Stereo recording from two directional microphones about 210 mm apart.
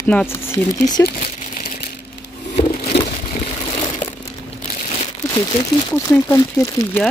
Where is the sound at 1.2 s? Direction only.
40° left (ahead or behind).